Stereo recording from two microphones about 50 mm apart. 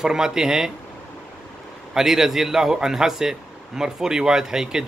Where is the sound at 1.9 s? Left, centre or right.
Centre.